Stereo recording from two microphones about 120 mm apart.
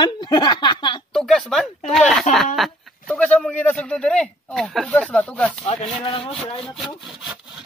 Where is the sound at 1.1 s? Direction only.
Centre (ahead or behind).